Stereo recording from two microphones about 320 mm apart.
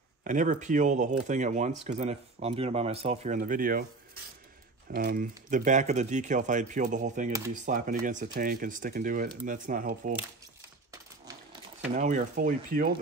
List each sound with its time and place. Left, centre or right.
0.2 s speech: right
11.9 s speech: right